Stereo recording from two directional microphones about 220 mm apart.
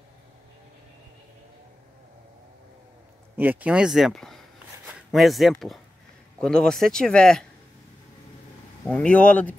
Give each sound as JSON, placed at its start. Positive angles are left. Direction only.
{"t": 3.3, "sound": "speech", "side_deg": -5}
{"t": 8.8, "sound": "speech", "side_deg": 5}